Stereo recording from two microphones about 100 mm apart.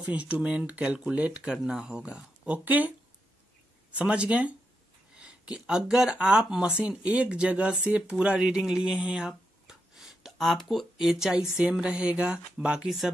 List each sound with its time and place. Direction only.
0.0 s speech: 15° right (ahead or behind)
3.9 s speech: 10° right (ahead or behind)